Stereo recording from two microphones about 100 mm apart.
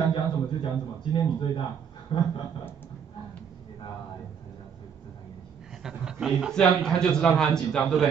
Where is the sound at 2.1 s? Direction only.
60° left (ahead or behind).